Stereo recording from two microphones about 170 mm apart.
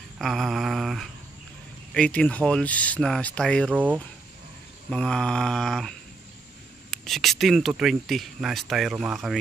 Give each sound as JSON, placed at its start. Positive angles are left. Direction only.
{"t": 0.2, "sound": "speech", "side_deg": 0}
{"t": 3.7, "sound": "speech", "side_deg": -10}
{"t": 4.8, "sound": "speech", "side_deg": 5}